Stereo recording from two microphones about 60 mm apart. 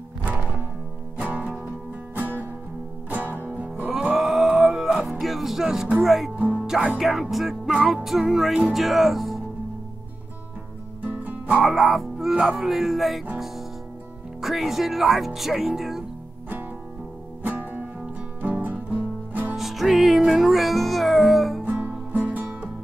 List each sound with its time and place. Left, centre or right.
1.1 s music: right
3.9 s music: centre
6.0 s speech: centre
6.3 s music: right
7.0 s speech: centre
11.0 s music: right
11.6 s speech: centre
14.4 s speech: centre
17.4 s music: right
19.5 s music: centre
21.6 s music: right